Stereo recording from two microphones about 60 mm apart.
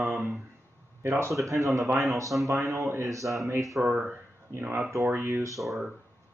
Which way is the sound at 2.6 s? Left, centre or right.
Right.